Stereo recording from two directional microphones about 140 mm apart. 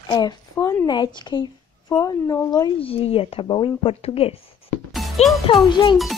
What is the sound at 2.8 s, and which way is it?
Speech, 45° left (ahead or behind).